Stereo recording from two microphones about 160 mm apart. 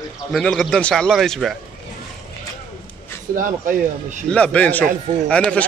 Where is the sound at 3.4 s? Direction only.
55° right (ahead or behind).